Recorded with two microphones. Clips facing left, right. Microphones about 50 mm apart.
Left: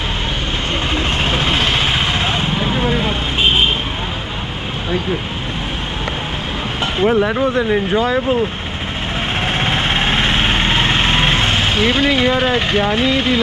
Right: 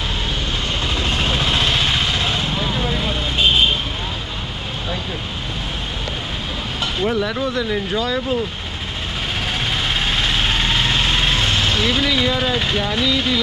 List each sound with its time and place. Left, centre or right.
0.9 s vehicle: left
7.0 s speech: left
9.6 s vehicle: left